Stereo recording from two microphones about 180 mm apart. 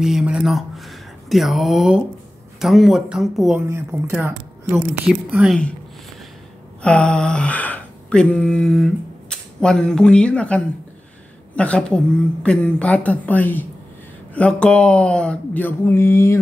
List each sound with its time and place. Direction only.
0.0 s speech: 5° right (ahead or behind)
3.6 s speech: 15° right (ahead or behind)
4.7 s speech: 5° right (ahead or behind)
6.8 s a sound: 5° left (ahead or behind)
11.5 s speech: 5° left (ahead or behind)